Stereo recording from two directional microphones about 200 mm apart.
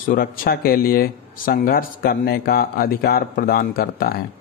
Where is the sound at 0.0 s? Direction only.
45° left (ahead or behind).